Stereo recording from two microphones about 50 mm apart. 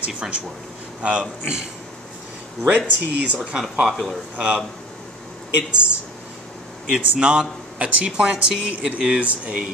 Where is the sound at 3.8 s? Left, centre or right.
Centre.